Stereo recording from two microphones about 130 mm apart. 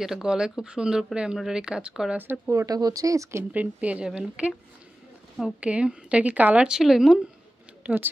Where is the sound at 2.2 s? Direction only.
20° right (ahead or behind).